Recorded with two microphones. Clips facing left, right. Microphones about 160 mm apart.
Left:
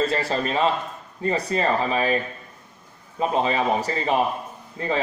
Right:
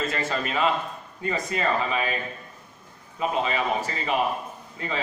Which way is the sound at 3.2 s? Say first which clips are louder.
Left 4 dB; 35° left (ahead or behind).